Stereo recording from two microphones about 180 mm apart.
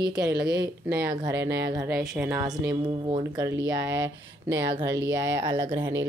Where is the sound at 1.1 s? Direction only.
20° right (ahead or behind).